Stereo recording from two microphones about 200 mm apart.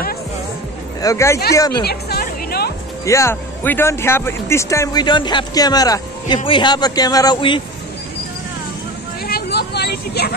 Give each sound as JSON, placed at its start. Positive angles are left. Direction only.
{"t": 1.0, "sound": "speech", "side_deg": 15}
{"t": 1.9, "sound": "music", "side_deg": 50}
{"t": 3.1, "sound": "speech", "side_deg": 15}
{"t": 9.3, "sound": "vehicle", "side_deg": 55}